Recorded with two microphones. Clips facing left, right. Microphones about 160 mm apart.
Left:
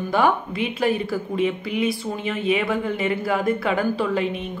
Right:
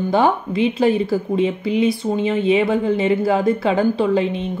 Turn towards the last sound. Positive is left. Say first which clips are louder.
# right 5 dB
turn(degrees=-30)  # may be behind; listen again after turning